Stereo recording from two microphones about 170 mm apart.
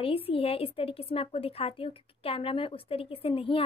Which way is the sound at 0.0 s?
35° left (ahead or behind).